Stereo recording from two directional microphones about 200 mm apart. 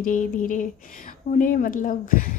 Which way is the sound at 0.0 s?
40° left (ahead or behind).